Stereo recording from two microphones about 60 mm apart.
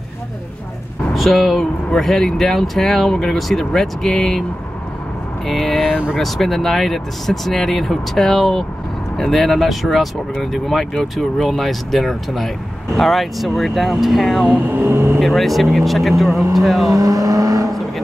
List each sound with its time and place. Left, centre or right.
1.1 s speech: centre
5.5 s speech: centre
14.7 s speech: right
15.1 s speech: centre
16.9 s vehicle: right